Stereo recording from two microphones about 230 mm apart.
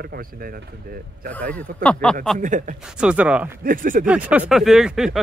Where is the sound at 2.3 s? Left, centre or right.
Right.